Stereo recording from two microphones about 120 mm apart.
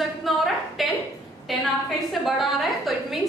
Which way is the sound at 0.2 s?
Centre (ahead or behind).